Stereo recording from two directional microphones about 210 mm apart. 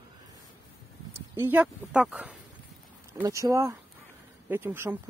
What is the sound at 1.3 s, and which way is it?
Speech, 10° right (ahead or behind).